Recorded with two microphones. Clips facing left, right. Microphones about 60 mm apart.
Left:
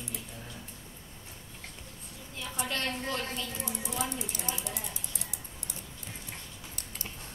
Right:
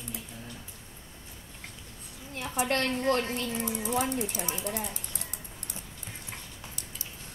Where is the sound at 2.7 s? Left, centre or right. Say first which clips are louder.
Right 7 dB; right.